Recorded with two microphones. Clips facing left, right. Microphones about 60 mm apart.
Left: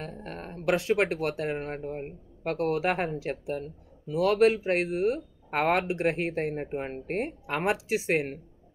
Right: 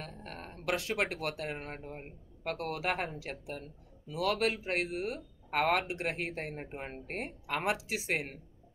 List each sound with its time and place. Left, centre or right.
0.0 s speech: left